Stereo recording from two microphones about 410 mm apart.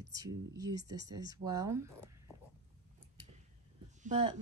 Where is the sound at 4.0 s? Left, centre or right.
Centre.